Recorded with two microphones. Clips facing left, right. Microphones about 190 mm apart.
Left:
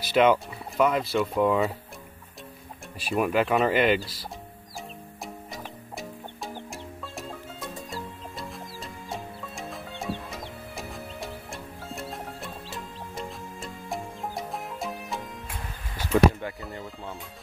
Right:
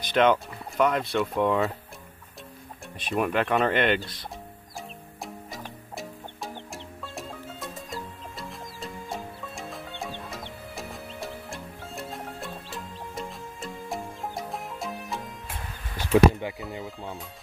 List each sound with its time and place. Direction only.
0.0 s speech: 5° left (ahead or behind)
3.1 s speech: 5° left (ahead or behind)
5.2 s music: centre (ahead or behind)
16.1 s speech: 15° right (ahead or behind)
16.5 s speech: centre (ahead or behind)